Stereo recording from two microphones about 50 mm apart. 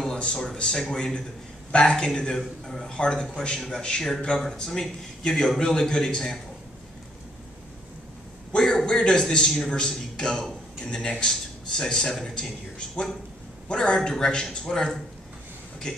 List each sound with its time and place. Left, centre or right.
0.1 s a man's voice: centre
8.5 s a man's voice: centre